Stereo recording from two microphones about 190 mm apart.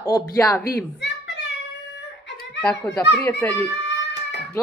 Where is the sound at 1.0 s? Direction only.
70° left (ahead or behind).